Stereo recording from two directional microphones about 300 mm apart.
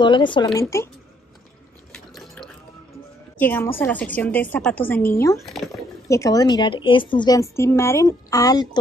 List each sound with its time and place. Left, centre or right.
0.0 s a woman's voice: centre
1.9 s water: centre
3.3 s a woman's voice: centre